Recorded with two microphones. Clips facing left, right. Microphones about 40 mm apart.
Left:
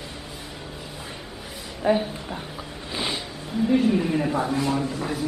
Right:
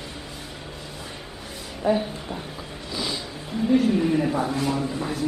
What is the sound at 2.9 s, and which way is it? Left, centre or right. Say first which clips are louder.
Music: left 1 dB; left.